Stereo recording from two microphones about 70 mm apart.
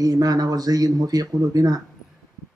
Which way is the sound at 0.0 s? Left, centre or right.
Right.